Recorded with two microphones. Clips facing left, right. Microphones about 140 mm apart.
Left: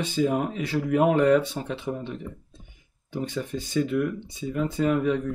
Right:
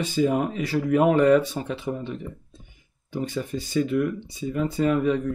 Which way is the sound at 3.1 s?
40° right (ahead or behind).